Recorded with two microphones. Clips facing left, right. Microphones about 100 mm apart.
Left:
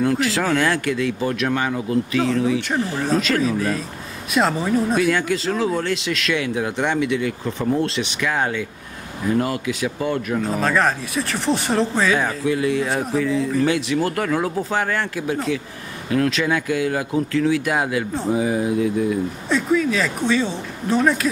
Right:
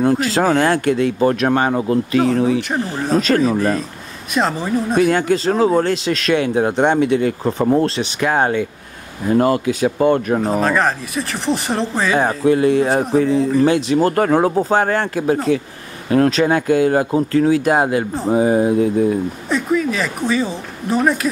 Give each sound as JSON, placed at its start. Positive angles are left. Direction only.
{"t": 0.0, "sound": "speech", "side_deg": -35}
{"t": 3.4, "sound": "a woman's voice", "side_deg": 0}
{"t": 4.9, "sound": "speech", "side_deg": -40}
{"t": 10.5, "sound": "a woman's voice", "side_deg": 0}
{"t": 12.2, "sound": "speech", "side_deg": -40}
{"t": 19.5, "sound": "a woman's voice", "side_deg": -5}